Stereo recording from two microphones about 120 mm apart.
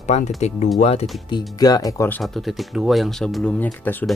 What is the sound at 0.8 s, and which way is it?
Speech, 60° left (ahead or behind).